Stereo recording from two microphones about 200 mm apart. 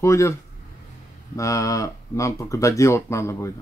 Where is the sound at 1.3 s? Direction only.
15° left (ahead or behind).